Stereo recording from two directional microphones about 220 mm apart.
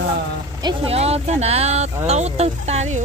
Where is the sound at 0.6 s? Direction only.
25° right (ahead or behind).